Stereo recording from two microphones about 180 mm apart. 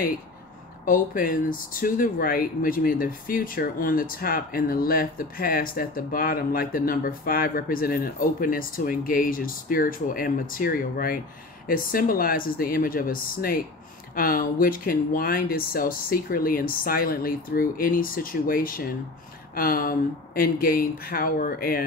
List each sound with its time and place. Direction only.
0.8 s speech: 50° left (ahead or behind)